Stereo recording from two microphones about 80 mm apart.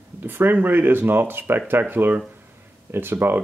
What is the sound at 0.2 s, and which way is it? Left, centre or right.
Speech, right.